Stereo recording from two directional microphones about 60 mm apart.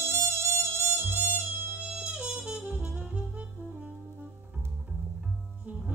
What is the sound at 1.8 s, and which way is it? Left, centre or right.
Music, centre.